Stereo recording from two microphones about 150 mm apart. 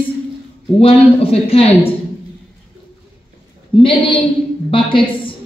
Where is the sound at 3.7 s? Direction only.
35° left (ahead or behind).